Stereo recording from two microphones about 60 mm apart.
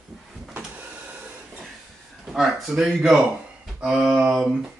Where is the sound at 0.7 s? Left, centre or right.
Right.